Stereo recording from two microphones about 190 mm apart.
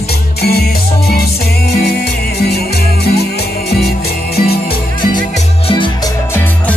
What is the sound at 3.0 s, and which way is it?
Music, 55° left (ahead or behind).